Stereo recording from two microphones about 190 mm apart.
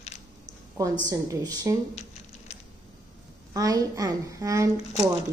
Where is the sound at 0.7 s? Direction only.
20° right (ahead or behind).